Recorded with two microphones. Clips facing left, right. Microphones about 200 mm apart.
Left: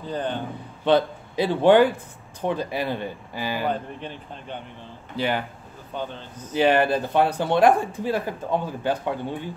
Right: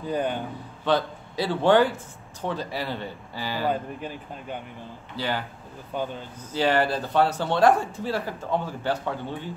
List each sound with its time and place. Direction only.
0.0 s speech: 10° right (ahead or behind)
0.8 s a man's voice: 20° left (ahead or behind)
3.6 s speech: 10° right (ahead or behind)
5.1 s speech: 20° left (ahead or behind)
5.9 s speech: 10° right (ahead or behind)
6.5 s speech: 20° left (ahead or behind)